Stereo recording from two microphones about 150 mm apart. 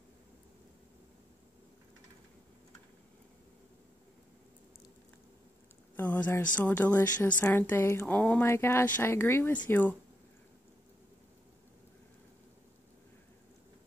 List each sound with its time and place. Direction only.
5.9 s speech: 10° left (ahead or behind)